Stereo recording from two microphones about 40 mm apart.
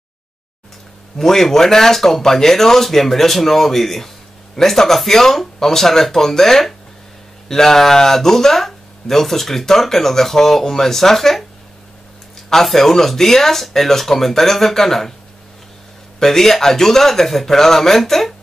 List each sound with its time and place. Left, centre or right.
1.1 s speech: centre
16.2 s speech: centre